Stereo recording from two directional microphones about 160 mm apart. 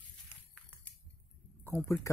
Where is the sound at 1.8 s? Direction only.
15° left (ahead or behind).